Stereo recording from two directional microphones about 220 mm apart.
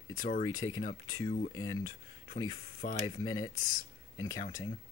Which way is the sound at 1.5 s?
15° left (ahead or behind).